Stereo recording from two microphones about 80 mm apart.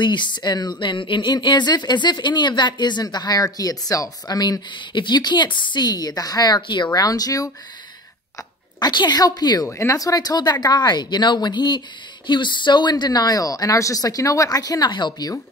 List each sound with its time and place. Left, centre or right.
0.0 s a woman's voice: left
6.9 s speech: left
8.7 s a woman's voice: left
9.7 s a woman's voice: left
12.3 s speech: left
12.9 s speech: left
14.9 s speech: left